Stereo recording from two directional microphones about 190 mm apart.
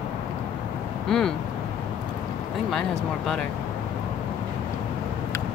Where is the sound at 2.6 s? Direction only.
Centre (ahead or behind).